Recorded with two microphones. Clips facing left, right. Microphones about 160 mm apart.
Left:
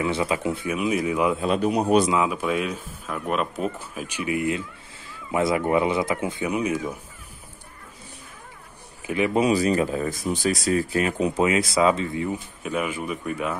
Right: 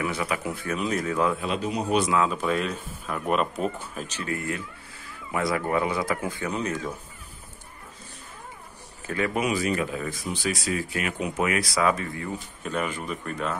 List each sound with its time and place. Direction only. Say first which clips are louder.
0.0 s speech: left 4 dB; 25° left (ahead or behind)
0.7 s speech: left 2 dB; 10° left (ahead or behind)
1.4 s a man's voice: left 6 dB; 55° left (ahead or behind)
2.0 s speech: left 1 dB; 15° left (ahead or behind)
6.5 s speech: left 5 dB; 10° left (ahead or behind)
9.0 s a man's voice: left 4 dB; 20° left (ahead or behind)
9.4 s speech: left 7 dB; 35° left (ahead or behind)
12.6 s speech: left 2 dB; 5° left (ahead or behind)